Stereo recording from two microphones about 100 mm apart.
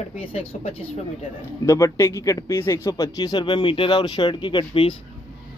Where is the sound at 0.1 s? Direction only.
85° left.